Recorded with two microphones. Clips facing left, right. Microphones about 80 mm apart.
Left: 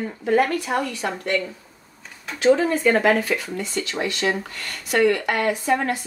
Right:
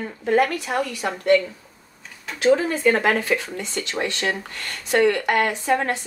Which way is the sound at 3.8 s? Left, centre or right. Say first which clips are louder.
Even; right.